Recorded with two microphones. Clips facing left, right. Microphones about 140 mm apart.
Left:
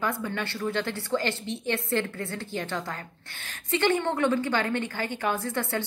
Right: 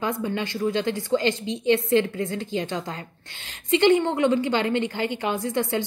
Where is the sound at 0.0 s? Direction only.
15° right (ahead or behind).